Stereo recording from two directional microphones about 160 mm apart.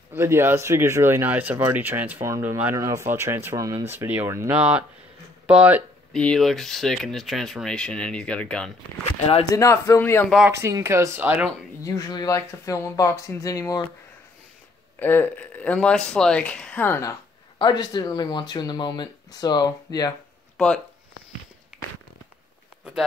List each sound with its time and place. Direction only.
0.1 s speech: 15° right (ahead or behind)
6.1 s speech: 5° left (ahead or behind)
9.5 s a man's voice: 20° left (ahead or behind)
10.5 s speech: 20° right (ahead or behind)
11.8 s speech: 25° left (ahead or behind)
15.0 s speech: 10° left (ahead or behind)
20.5 s speech: 5° left (ahead or behind)